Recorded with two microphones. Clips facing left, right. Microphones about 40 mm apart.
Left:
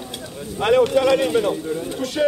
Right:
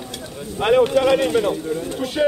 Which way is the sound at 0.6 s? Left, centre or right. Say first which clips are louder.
Even; centre.